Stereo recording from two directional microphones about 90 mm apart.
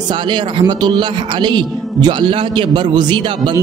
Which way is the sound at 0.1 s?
60° right (ahead or behind).